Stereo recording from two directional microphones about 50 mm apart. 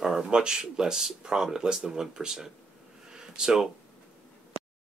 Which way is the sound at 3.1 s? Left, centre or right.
Centre.